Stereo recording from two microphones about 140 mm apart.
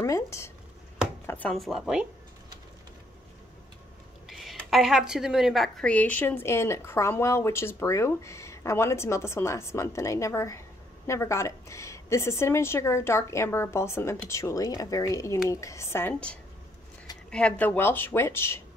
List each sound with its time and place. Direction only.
0.0 s a sound: 20° left (ahead or behind)
1.2 s chopping: 15° left (ahead or behind)
1.5 s speech: centre (ahead or behind)
4.3 s speech: centre (ahead or behind); by 18.6 s 15° left (ahead or behind)